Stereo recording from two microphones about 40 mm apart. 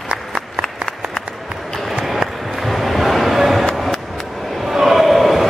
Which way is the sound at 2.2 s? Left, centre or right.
Right.